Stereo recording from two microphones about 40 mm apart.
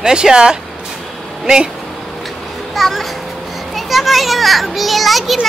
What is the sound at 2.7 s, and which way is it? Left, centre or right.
A child's voice, centre.